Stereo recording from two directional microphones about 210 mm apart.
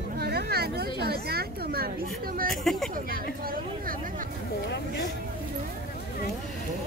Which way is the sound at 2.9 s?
45° right (ahead or behind).